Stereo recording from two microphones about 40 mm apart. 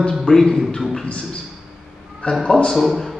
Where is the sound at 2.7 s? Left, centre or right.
Centre.